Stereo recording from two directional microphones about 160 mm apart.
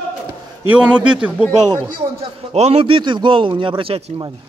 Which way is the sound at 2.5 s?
40° right (ahead or behind).